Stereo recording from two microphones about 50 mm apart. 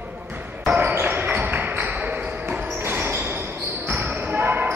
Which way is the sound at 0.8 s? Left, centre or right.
Right.